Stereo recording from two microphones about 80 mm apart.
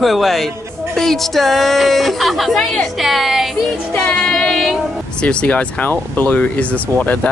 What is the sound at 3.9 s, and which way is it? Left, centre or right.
Speech, centre.